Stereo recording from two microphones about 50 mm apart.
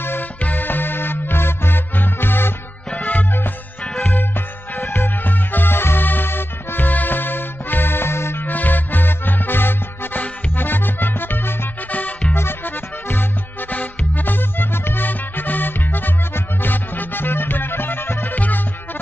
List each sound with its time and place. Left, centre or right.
0.4 s music: left
4.8 s music: left
8.5 s music: left
13.7 s music: left